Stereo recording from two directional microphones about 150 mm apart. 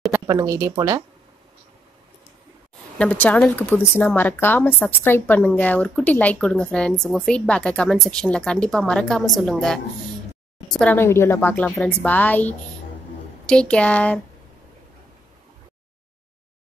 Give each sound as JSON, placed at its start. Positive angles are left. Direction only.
{"t": 0.3, "sound": "speech", "side_deg": -20}
{"t": 3.0, "sound": "a woman's voice", "side_deg": 10}